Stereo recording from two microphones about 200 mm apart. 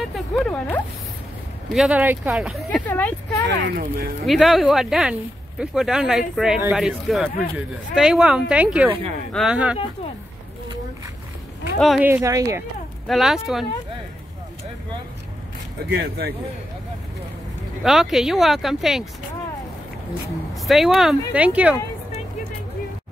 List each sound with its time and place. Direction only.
0.0 s a sound: centre (ahead or behind)
1.7 s speech: centre (ahead or behind)
2.9 s speech: 10° left (ahead or behind)
3.4 s speech: 55° right (ahead or behind)
4.3 s speech: centre (ahead or behind)
11.8 s speech: centre (ahead or behind)
12.1 s speech: 15° right (ahead or behind)
13.0 s speech: centre (ahead or behind)
15.9 s speech: 55° right (ahead or behind)
17.8 s speech: centre (ahead or behind)
20.5 s speech: centre (ahead or behind)